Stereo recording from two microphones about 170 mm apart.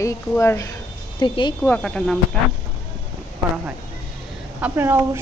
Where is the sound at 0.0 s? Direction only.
15° left (ahead or behind).